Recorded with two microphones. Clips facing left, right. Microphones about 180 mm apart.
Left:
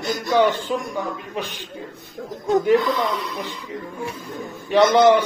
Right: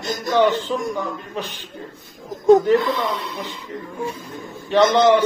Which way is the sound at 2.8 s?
25° right (ahead or behind).